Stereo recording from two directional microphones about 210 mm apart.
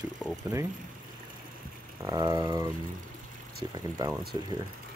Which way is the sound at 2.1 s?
20° right (ahead or behind).